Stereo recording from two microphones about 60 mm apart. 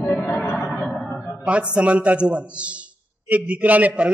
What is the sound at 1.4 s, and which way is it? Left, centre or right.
A man's voice, centre.